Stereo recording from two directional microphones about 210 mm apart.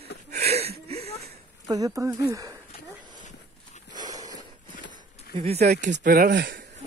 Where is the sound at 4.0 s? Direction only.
15° right (ahead or behind).